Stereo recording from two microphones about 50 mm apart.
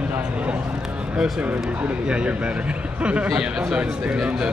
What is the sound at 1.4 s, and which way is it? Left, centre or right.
Speech, right.